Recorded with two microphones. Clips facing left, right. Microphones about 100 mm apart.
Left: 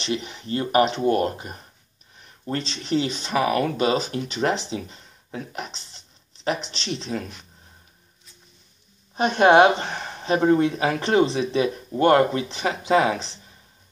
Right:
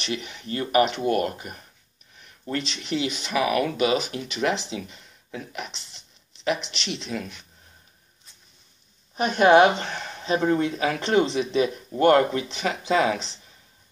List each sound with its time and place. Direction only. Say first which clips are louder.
0.0 s speech: left 3 dB; 30° left (ahead or behind)
9.1 s speech: left 1 dB; 30° left (ahead or behind)